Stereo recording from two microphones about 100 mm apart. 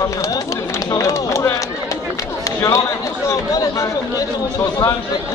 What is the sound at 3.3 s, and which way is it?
Speech, 35° left (ahead or behind).